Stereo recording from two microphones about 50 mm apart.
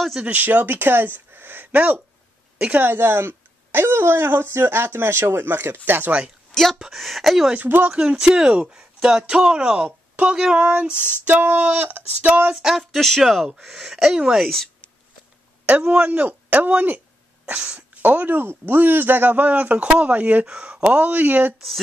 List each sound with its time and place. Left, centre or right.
0.2 s speech: right
2.8 s speech: right
6.5 s speech: centre
7.5 s female singing: right
7.9 s speech: centre
9.8 s a sound: right
10.3 s speech: centre
11.2 s female singing: right
12.5 s speech: centre
14.4 s speech: centre
15.6 s female singing: right
18.0 s female singing: right
20.0 s speech: right
21.5 s speech: centre